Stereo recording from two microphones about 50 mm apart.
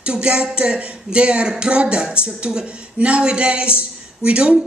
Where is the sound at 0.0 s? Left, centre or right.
Centre.